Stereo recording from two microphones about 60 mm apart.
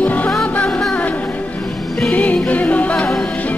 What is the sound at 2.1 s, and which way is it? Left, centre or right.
Music, left.